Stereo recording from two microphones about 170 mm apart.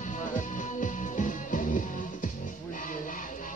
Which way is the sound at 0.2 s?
50° left (ahead or behind).